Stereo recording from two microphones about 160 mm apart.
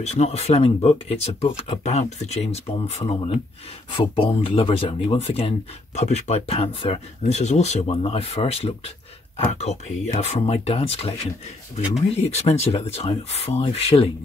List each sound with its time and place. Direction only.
0.0 s speech: 45° left (ahead or behind)
12.4 s speech: 40° left (ahead or behind)